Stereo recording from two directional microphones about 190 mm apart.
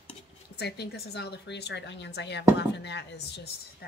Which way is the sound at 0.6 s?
60° left (ahead or behind).